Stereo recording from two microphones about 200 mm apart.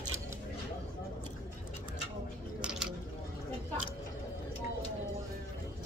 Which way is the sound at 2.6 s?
5° right (ahead or behind).